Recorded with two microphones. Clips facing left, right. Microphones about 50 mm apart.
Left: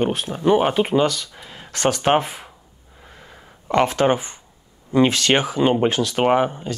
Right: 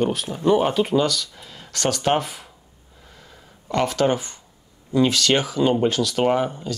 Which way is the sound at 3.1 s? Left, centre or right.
Left.